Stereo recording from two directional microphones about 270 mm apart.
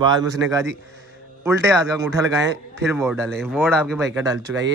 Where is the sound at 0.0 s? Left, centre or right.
Centre.